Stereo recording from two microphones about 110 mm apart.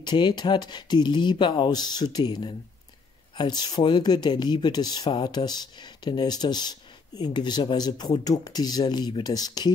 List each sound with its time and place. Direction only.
0.0 s speech: 40° left (ahead or behind)